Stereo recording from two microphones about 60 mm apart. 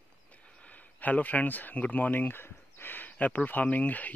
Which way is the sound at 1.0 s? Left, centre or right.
Left.